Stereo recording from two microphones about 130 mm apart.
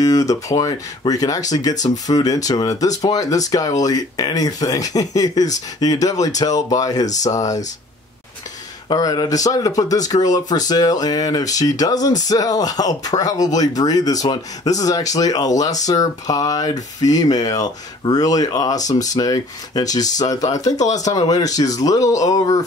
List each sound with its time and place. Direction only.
0.0 s speech: 25° left (ahead or behind)
8.8 s speech: 30° left (ahead or behind)